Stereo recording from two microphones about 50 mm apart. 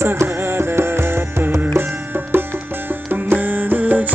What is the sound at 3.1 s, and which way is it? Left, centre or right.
Music, right.